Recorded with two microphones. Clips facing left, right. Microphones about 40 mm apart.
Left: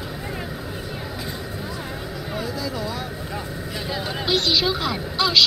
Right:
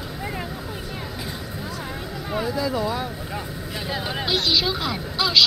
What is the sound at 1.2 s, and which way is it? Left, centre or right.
Vehicle, centre.